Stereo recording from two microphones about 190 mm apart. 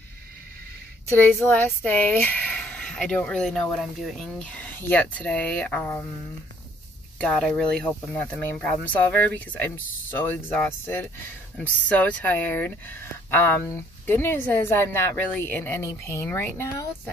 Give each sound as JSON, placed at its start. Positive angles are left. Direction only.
{"t": 1.1, "sound": "speech", "side_deg": 10}
{"t": 7.2, "sound": "speech", "side_deg": 5}